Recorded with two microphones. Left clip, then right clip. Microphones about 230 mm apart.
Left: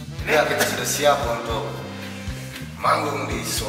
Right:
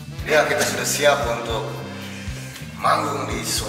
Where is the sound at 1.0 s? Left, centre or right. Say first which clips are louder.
Right 1 dB; centre.